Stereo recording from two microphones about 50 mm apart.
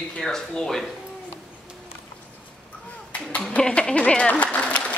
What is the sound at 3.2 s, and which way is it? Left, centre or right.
Speech, left.